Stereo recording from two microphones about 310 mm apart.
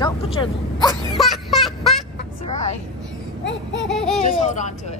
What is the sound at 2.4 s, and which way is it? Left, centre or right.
Vehicle, left.